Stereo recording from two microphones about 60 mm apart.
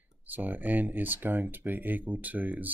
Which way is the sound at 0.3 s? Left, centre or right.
Right.